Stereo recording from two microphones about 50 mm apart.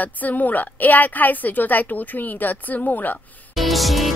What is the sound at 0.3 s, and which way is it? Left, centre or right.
A woman's voice, left.